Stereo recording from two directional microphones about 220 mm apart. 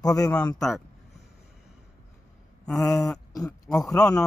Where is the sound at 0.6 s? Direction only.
Centre (ahead or behind).